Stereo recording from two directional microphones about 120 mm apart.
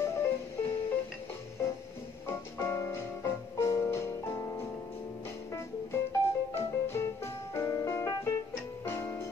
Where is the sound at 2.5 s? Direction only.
25° left (ahead or behind).